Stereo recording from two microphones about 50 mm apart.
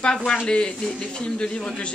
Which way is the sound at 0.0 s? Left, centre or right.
Centre.